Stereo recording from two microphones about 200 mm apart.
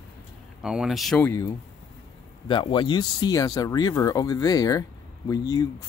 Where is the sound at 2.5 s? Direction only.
25° left (ahead or behind).